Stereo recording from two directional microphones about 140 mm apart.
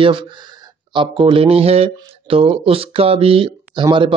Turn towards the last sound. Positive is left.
turn(degrees=-35)  # may be behind; listen again after turning